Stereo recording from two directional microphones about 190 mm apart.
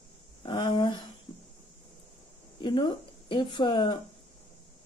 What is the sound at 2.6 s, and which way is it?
Speech, 25° left (ahead or behind).